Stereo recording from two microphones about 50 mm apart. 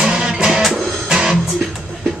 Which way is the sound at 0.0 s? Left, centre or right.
Centre.